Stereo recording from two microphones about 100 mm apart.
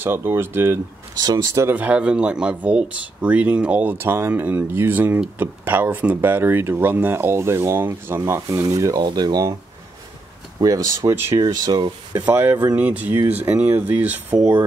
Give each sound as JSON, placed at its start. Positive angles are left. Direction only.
{"t": 0.0, "sound": "speech", "side_deg": -25}
{"t": 1.1, "sound": "speech", "side_deg": -45}
{"t": 1.5, "sound": "speech", "side_deg": -30}
{"t": 1.8, "sound": "speech", "side_deg": -15}
{"t": 9.0, "sound": "speech", "side_deg": -45}
{"t": 11.1, "sound": "speech", "side_deg": -25}
{"t": 11.3, "sound": "speech", "side_deg": -40}
{"t": 12.3, "sound": "speech", "side_deg": -20}